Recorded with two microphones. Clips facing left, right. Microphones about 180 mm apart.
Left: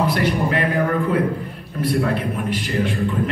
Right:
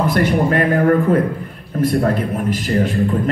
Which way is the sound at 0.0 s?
50° right (ahead or behind).